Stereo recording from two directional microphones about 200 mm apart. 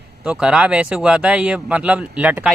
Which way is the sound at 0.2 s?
5° right (ahead or behind).